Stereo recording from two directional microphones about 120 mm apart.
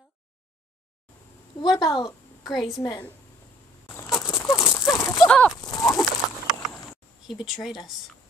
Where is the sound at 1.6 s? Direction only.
35° left (ahead or behind).